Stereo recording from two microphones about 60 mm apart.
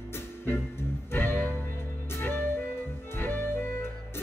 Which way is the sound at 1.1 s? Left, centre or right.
Left.